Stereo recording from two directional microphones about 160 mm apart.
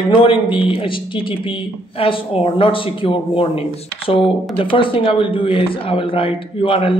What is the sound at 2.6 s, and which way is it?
Speech, 35° left (ahead or behind).